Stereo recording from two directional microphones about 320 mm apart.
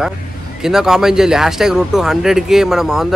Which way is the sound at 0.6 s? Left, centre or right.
Centre.